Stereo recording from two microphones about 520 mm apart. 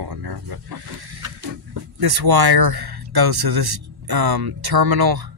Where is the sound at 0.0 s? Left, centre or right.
Right.